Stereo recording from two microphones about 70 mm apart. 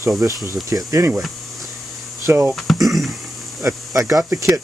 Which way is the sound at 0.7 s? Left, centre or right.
Right.